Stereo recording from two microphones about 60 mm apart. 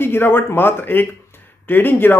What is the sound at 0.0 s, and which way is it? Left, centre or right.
Speech, left.